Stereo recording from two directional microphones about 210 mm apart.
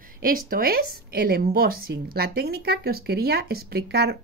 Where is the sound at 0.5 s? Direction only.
45° right (ahead or behind).